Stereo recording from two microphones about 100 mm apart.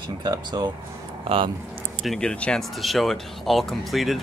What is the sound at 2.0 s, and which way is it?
Speech, 10° left (ahead or behind).